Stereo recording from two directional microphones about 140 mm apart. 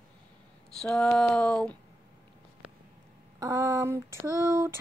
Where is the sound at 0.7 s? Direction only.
5° left (ahead or behind).